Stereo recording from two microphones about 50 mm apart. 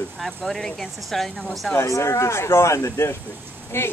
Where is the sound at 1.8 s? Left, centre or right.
Left.